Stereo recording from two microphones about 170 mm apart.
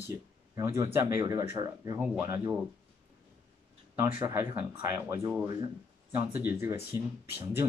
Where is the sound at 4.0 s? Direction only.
15° right (ahead or behind).